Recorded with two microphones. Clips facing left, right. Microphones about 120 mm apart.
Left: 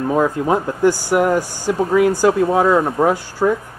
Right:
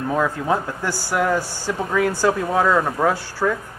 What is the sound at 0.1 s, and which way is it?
Speech, 15° left (ahead or behind).